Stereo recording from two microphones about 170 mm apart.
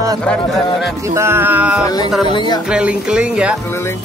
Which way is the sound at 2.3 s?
25° left (ahead or behind).